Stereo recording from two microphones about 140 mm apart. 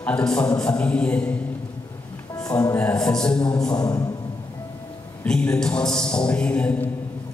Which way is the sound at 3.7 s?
25° left (ahead or behind).